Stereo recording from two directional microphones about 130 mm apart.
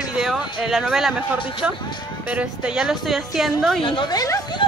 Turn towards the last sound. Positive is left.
turn(degrees=30)  # may be behind; listen again after turning